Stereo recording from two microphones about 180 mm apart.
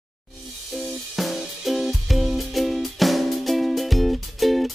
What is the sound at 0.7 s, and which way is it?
Music, centre (ahead or behind).